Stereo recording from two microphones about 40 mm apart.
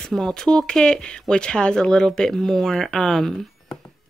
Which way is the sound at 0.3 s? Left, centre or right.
Centre.